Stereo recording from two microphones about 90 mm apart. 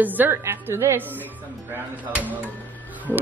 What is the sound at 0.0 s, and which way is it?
A woman's voice, 20° right (ahead or behind).